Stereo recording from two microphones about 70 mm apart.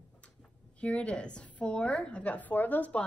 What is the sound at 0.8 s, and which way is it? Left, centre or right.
A woman's voice, centre.